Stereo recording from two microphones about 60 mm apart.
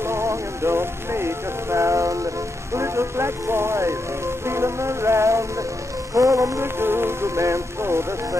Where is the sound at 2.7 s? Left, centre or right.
Right.